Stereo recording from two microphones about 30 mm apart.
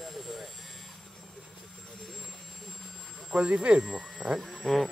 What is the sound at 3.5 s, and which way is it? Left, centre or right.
Speech, right.